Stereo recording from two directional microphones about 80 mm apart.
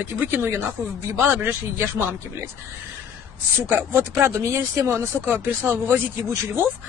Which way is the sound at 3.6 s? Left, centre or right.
Right.